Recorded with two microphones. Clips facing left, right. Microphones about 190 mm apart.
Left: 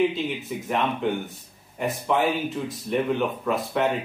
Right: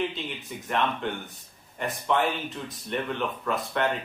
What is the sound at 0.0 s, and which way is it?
Speech, 5° left (ahead or behind).